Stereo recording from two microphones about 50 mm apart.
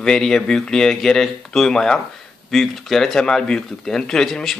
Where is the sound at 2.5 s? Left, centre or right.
Centre.